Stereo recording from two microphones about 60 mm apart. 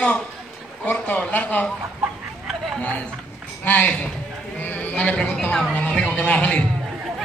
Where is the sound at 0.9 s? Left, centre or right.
Left.